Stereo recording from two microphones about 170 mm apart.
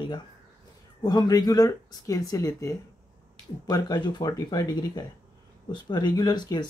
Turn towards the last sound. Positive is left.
turn(degrees=25)  # may be behind; listen again after turning